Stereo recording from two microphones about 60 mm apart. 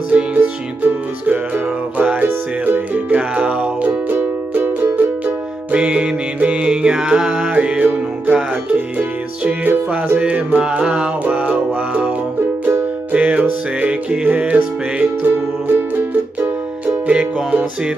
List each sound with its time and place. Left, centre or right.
0.1 s music: right
5.7 s music: centre
7.5 s music: right
13.1 s music: right